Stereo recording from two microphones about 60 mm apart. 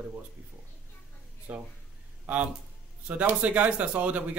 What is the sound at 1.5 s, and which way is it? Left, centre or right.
Speech, right.